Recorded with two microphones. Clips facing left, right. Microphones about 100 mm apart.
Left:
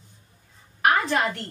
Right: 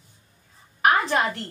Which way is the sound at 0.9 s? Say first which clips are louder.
Right 1 dB; 5° right (ahead or behind).